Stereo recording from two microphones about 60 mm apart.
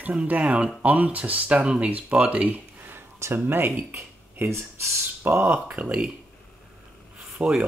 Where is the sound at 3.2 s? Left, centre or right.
Right.